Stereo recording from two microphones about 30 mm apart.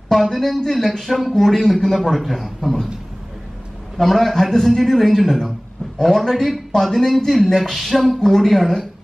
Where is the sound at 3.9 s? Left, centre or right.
Centre.